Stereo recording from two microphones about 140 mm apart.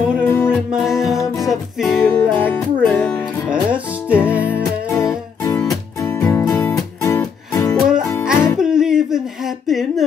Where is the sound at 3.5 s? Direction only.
10° right (ahead or behind).